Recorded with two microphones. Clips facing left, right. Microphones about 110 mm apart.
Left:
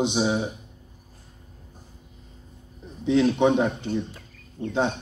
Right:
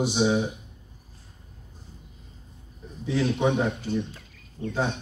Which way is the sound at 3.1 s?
20° left (ahead or behind).